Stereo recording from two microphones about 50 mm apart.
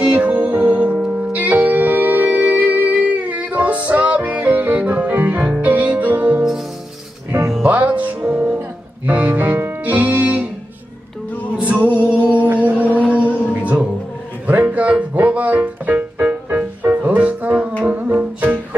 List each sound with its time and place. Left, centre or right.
0.0 s music: right
0.9 s music: centre
1.3 s music: right
7.6 s music: right
11.5 s music: right